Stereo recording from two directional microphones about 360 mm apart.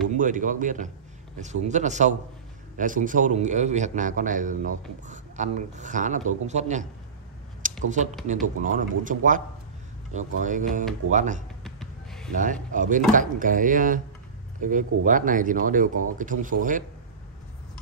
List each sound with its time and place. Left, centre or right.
0.1 s a man's voice: right
7.9 s a man's voice: centre
11.6 s music: centre
12.7 s a man's voice: right